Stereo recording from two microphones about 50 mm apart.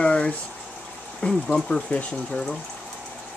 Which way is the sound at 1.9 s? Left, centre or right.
Left.